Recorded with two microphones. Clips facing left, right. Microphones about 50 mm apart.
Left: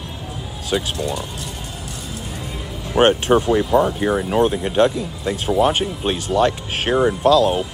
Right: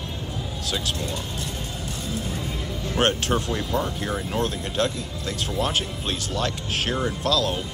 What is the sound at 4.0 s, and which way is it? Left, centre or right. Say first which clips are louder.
Speech: left 9 dB; left.